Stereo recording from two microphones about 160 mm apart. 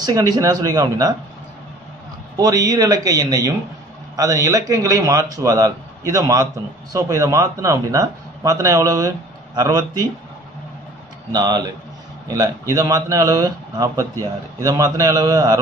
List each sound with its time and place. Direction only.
0.0 s a man's voice: 25° right (ahead or behind)
2.3 s a man's voice: 20° right (ahead or behind)
11.3 s a man's voice: 25° right (ahead or behind)